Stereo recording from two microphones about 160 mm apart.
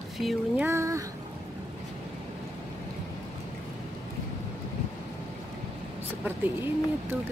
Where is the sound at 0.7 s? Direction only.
20° right (ahead or behind).